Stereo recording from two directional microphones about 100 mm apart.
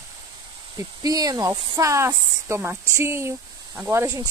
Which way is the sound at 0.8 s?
35° right (ahead or behind).